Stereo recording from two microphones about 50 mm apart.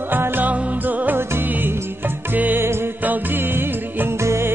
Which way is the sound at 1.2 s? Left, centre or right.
Right.